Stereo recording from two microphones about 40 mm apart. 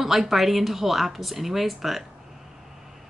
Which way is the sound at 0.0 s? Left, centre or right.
Centre.